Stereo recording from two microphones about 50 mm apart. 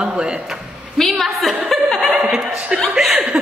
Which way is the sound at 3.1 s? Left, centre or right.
Right.